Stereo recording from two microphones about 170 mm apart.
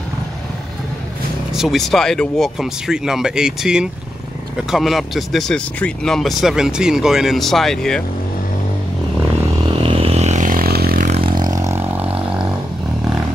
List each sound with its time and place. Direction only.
1.5 s speech: centre (ahead or behind)
9.8 s a sound: 35° right (ahead or behind); by 11.1 s 60° right (ahead or behind)
11.1 s vehicle: 30° right (ahead or behind); by 12.4 s 10° right (ahead or behind)